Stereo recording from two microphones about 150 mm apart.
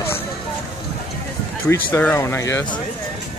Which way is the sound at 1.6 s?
15° left (ahead or behind).